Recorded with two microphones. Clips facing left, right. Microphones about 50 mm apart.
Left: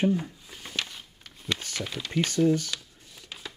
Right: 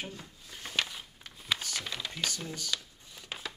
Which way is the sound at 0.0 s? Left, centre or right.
Left.